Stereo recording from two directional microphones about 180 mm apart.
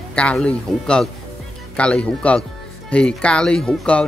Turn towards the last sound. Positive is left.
turn(degrees=5)  # may be behind; listen again after turning